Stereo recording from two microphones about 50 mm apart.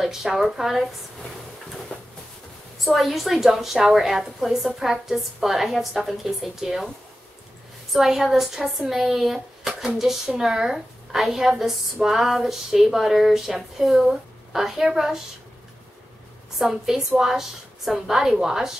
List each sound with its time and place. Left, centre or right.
0.0 s speech: centre
1.9 s a sound: left
2.8 s a woman's voice: centre
7.9 s speech: centre
16.5 s speech: centre